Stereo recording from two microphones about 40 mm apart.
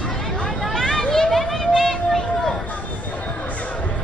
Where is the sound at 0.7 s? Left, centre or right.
Centre.